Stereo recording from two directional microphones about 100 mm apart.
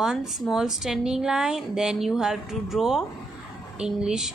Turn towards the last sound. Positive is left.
turn(degrees=-5)  # may be behind; listen again after turning